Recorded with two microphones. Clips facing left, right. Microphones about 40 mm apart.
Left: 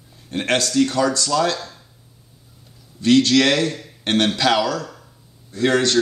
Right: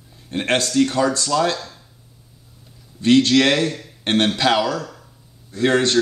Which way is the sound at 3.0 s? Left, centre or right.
Centre.